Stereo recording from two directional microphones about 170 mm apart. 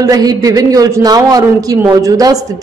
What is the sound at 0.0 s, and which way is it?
A woman's voice, 20° right (ahead or behind).